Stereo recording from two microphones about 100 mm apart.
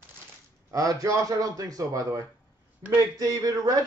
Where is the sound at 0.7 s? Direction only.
35° right (ahead or behind).